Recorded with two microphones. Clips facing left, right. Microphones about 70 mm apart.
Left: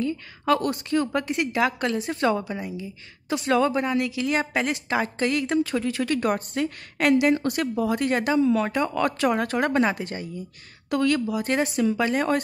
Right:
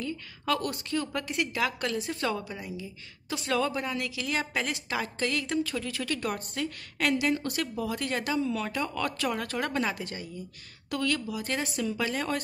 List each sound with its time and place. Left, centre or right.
0.0 s a woman's voice: left